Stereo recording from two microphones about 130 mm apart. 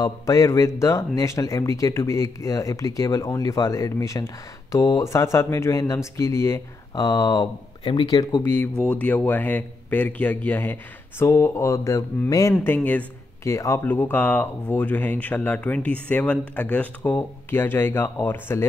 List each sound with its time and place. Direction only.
0.0 s speech: 25° left (ahead or behind); by 8.2 s 40° left (ahead or behind)
8.2 s speech: 30° left (ahead or behind)
8.8 s speech: 10° left (ahead or behind)
12.6 s speech: 15° left (ahead or behind)